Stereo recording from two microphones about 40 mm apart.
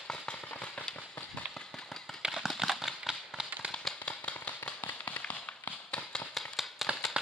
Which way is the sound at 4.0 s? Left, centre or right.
Left.